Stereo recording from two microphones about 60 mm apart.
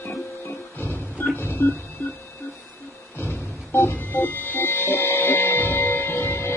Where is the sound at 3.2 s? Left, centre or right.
Left.